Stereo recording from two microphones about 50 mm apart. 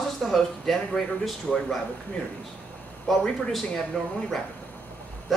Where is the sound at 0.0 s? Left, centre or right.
Centre.